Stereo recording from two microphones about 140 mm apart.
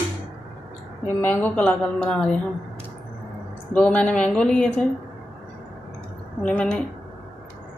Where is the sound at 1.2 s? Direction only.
10° left (ahead or behind).